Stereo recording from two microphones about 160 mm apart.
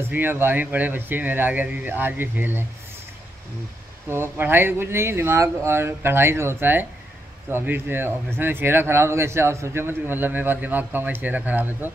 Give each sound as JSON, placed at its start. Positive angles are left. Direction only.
{"t": 0.1, "sound": "speech", "side_deg": -15}
{"t": 4.1, "sound": "speech", "side_deg": -15}